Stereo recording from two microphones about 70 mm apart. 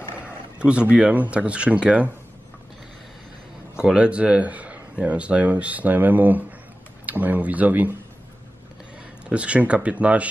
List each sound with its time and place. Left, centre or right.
0.6 s speech: centre
3.7 s speech: centre
9.3 s speech: centre